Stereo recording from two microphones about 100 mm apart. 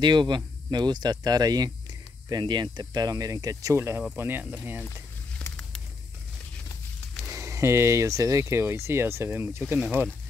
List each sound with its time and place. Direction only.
0.0 s speech: 50° right (ahead or behind); by 4.8 s 15° right (ahead or behind)
5.4 s a sound: 10° left (ahead or behind)
7.2 s speech: 30° right (ahead or behind)